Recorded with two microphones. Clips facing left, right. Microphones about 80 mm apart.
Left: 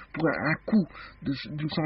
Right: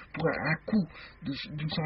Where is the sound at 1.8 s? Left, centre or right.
Left.